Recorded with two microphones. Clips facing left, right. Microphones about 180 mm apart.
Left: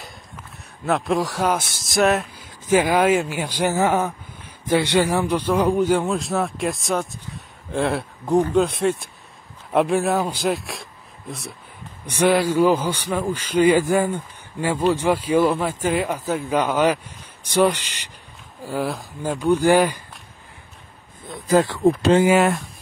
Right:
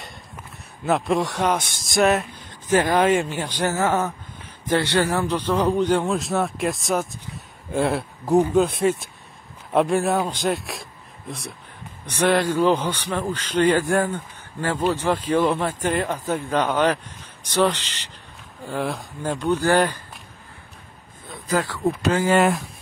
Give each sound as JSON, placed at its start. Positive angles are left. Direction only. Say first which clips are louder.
{"t": 0.8, "sound": "a man's voice", "louder": "even", "side_deg": 0}
{"t": 21.5, "sound": "speech", "louder": "left 6 dB", "side_deg": 25}
{"t": 22.4, "sound": "speech", "louder": "even", "side_deg": 0}